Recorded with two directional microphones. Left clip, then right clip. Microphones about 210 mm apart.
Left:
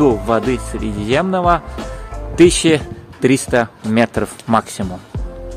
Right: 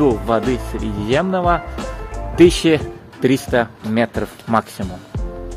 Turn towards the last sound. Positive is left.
turn(degrees=20)  # may be behind; listen again after turning